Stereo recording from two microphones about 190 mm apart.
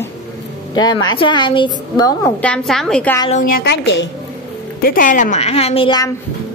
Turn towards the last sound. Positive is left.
turn(degrees=30)  # may be behind; listen again after turning